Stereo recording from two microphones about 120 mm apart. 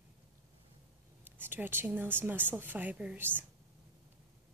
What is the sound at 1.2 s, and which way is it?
A woman's voice, 15° right (ahead or behind).